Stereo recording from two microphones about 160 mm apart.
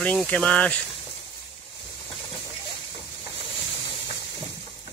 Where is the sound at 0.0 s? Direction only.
10° left (ahead or behind).